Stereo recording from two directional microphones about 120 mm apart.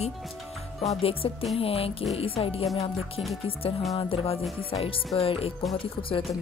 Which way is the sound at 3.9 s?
50° left (ahead or behind).